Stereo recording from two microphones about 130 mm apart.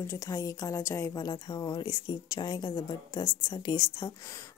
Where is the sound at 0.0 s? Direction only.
25° left (ahead or behind).